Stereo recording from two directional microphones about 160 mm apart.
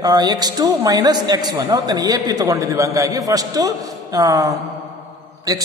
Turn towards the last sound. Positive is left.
turn(degrees=-20)  # may be behind; listen again after turning